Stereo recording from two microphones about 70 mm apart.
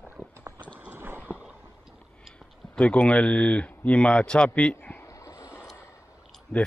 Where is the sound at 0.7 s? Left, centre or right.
Right.